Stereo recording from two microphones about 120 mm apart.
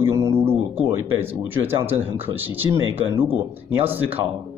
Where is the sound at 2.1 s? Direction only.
15° right (ahead or behind).